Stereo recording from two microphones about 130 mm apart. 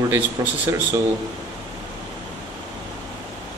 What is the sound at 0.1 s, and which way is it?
Speech, 20° right (ahead or behind).